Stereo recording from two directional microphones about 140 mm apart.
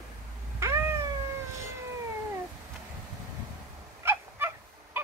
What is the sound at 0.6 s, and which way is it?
Cat, 20° right (ahead or behind).